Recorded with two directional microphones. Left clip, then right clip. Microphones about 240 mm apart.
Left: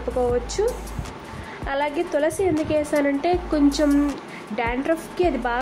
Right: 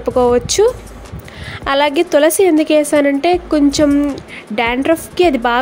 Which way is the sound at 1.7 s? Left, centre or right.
Right.